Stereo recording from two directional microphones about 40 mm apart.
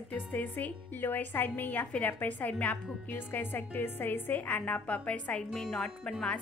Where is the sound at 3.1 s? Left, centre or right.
Left.